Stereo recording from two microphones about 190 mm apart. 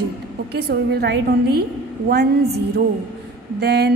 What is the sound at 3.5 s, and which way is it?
Speech, 60° right (ahead or behind).